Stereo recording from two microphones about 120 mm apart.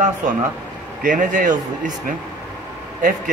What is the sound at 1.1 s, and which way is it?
Speech, 90° right.